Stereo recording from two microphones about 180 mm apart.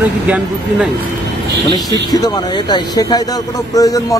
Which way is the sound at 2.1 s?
20° left (ahead or behind).